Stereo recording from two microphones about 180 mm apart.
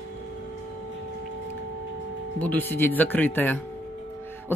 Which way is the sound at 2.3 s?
10° left (ahead or behind).